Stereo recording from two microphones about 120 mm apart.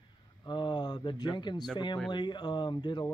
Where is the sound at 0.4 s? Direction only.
40° left (ahead or behind).